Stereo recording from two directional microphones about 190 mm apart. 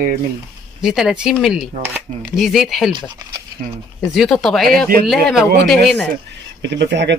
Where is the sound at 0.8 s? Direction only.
5° right (ahead or behind).